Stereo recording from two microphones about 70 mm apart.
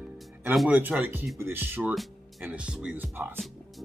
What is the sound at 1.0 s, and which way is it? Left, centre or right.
Speech, right.